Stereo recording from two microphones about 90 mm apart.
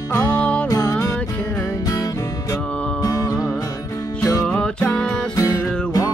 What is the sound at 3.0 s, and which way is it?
Music, 40° left (ahead or behind).